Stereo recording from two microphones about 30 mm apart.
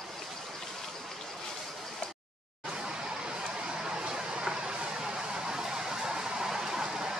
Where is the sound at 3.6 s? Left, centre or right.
Right.